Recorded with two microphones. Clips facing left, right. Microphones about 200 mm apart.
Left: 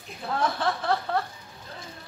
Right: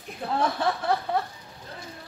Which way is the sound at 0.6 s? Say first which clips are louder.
Right 1 dB; 15° right (ahead or behind).